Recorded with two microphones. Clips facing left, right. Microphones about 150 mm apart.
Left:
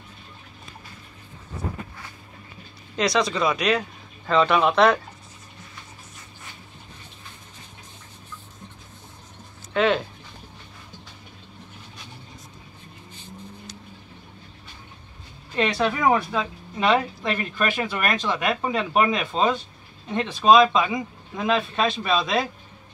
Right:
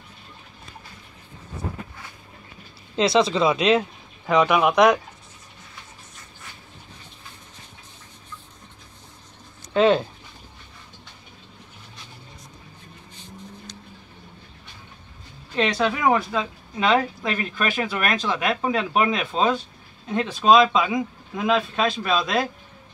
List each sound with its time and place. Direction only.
3.0 s speech: 25° right (ahead or behind)
9.8 s speech: 30° right (ahead or behind)
15.5 s a woman's voice: 5° left (ahead or behind)